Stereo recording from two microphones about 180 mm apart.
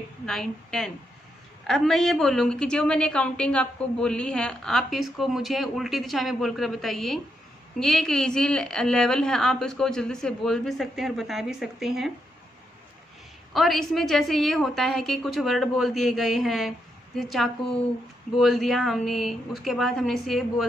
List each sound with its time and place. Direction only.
0.3 s a woman's voice: centre (ahead or behind)
13.5 s a woman's voice: centre (ahead or behind)